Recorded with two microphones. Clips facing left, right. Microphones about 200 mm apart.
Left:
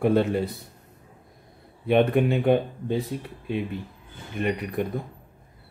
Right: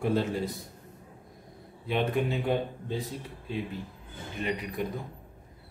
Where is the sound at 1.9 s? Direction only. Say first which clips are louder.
Left 8 dB; 60° left (ahead or behind).